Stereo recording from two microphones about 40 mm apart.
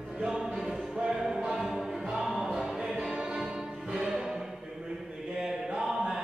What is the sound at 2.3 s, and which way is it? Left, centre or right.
Choir, centre.